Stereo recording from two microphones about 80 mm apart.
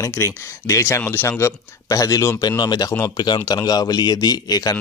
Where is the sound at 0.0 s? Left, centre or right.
Left.